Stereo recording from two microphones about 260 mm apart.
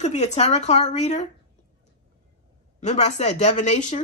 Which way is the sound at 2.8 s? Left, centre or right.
Left.